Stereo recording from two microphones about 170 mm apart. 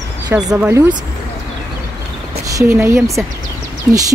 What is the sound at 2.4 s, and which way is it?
Speech, 15° right (ahead or behind).